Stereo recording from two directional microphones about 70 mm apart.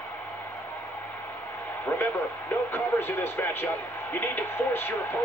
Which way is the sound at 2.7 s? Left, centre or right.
Left.